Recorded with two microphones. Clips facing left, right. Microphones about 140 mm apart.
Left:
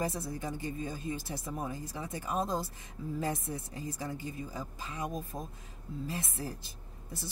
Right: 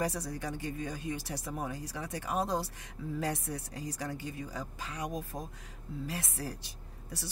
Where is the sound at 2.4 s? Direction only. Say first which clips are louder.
Right 1 dB; centre (ahead or behind).